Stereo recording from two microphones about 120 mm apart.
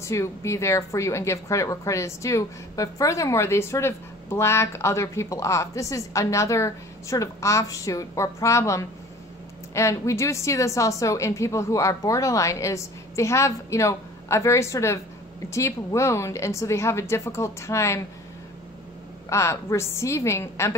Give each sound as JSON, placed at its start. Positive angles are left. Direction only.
{"t": 0.0, "sound": "a woman's voice", "side_deg": 25}
{"t": 19.2, "sound": "a woman's voice", "side_deg": 25}